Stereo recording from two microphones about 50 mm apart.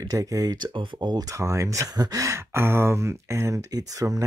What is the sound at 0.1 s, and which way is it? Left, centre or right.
Speech, right.